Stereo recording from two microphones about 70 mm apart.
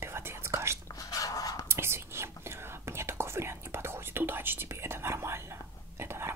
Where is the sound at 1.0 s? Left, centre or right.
Left.